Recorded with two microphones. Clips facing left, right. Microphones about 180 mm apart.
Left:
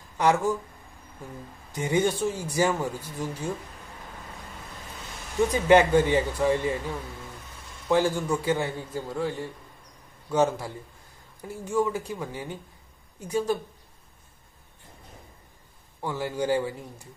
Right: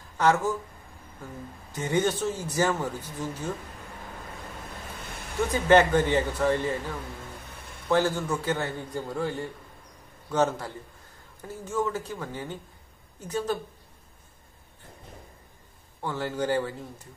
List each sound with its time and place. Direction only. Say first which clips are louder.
0.2 s speech: left 1 dB; 15° left (ahead or behind)
1.7 s speech: left 1 dB; 15° left (ahead or behind)
5.0 s a sound: right 1 dB; 60° right (ahead or behind)
5.5 s speech: left 1 dB; 10° left (ahead or behind)
7.4 s a sound: right 1 dB; 60° right (ahead or behind)
7.9 s speech: left 1 dB; 10° left (ahead or behind)
9.1 s a man's voice: left 1 dB; centre (ahead or behind)
16.0 s speech: left 1 dB; 10° left (ahead or behind)